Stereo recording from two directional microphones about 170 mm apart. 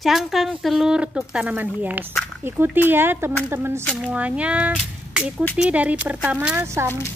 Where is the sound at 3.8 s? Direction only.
Centre (ahead or behind).